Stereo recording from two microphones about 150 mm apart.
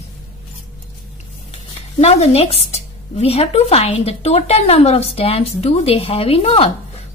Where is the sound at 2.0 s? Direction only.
45° left (ahead or behind).